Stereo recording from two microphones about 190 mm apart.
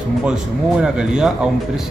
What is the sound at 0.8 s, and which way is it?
Speech, 5° right (ahead or behind).